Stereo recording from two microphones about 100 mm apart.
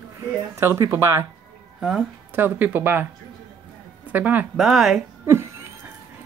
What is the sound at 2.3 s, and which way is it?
Speech, 20° right (ahead or behind).